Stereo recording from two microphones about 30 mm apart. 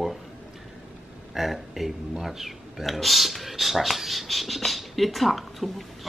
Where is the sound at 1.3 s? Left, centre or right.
Centre.